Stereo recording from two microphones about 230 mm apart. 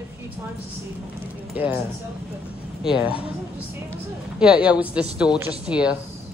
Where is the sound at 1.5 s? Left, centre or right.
Centre.